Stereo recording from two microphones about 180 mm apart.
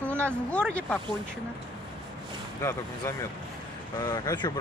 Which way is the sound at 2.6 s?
15° left (ahead or behind).